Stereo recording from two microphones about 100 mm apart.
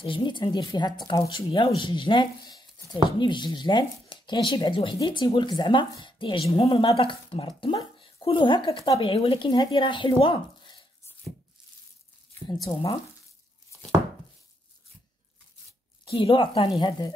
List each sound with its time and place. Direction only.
0.0 s a woman's voice: 55° left (ahead or behind)
1.5 s a woman's voice: 55° left (ahead or behind)
4.9 s a woman's voice: 50° left (ahead or behind)
8.8 s speech: 65° left (ahead or behind)
12.4 s a woman's voice: 40° left (ahead or behind)
16.1 s speech: 60° left (ahead or behind)